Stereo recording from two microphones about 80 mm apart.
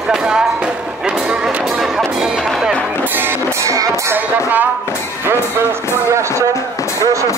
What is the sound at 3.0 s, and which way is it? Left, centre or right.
Music, right.